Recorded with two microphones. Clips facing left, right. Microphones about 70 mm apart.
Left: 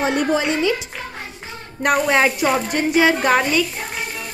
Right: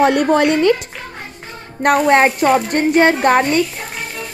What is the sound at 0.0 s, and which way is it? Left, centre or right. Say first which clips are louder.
Speech: right 6 dB; right.